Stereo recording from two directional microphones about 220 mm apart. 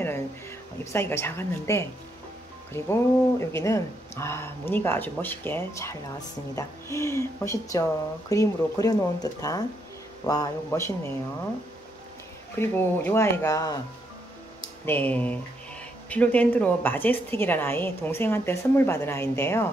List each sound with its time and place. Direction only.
0.9 s speech: 10° left (ahead or behind)
12.5 s speech: 10° left (ahead or behind)
14.9 s speech: 10° left (ahead or behind)